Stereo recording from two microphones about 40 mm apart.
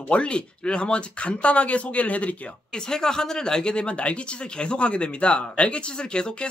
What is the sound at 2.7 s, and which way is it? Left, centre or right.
Speech, centre.